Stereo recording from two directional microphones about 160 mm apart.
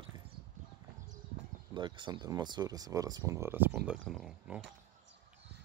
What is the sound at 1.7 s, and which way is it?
Speech, 30° right (ahead or behind).